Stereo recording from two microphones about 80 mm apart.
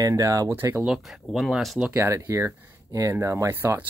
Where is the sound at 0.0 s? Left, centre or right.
Right.